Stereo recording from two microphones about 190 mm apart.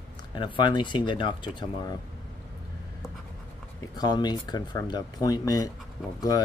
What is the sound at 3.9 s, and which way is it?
Speech, 20° left (ahead or behind).